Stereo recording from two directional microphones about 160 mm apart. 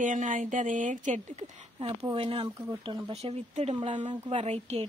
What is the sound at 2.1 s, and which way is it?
Speech, 35° right (ahead or behind).